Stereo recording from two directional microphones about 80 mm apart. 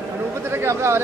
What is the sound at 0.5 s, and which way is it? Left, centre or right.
Chatter, right.